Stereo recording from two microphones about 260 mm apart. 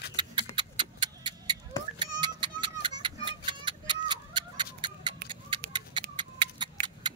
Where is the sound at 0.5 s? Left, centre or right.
Centre.